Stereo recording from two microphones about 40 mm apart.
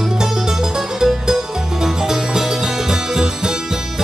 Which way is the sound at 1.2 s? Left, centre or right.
Centre.